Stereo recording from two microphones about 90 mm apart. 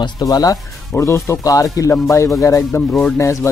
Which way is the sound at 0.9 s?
30° left (ahead or behind).